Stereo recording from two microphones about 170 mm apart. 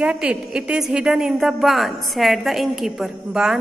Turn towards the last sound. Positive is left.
turn(degrees=-5)  # may be behind; listen again after turning